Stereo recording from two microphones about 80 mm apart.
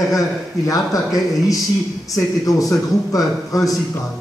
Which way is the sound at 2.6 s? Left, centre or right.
Left.